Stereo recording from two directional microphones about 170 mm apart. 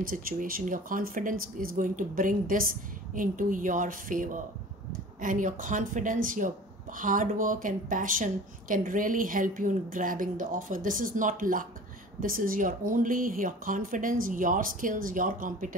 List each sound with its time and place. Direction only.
0.0 s a woman's voice: 55° right (ahead or behind)